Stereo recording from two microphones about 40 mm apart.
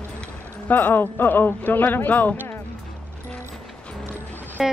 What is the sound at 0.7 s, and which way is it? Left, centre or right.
A man's voice, left.